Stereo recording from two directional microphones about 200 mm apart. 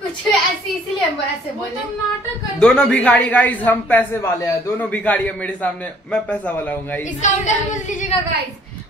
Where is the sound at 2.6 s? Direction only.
5° left (ahead or behind).